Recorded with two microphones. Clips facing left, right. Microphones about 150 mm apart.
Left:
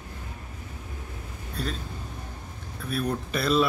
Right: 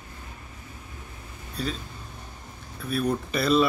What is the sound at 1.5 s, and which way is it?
Speech, centre (ahead or behind).